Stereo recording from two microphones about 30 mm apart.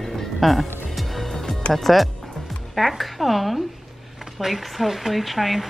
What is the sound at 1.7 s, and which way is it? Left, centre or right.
Speech, centre.